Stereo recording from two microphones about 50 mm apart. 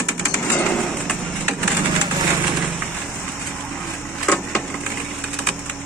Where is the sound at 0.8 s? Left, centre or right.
Centre.